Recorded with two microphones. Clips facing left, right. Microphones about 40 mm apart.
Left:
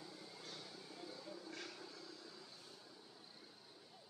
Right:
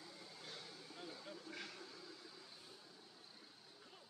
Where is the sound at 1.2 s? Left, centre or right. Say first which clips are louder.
Left 1 dB; right.